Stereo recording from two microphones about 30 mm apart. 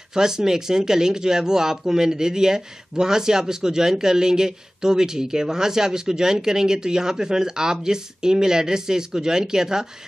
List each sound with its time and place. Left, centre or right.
0.1 s speech: centre